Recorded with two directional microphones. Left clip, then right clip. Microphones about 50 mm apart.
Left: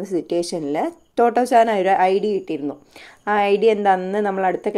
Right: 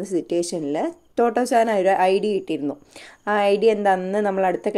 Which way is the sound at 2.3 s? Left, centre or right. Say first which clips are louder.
Even; right.